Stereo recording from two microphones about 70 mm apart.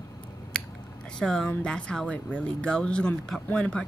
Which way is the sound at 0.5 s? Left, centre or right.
Centre.